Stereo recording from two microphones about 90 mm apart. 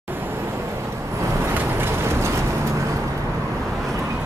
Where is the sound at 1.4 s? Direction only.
25° right (ahead or behind).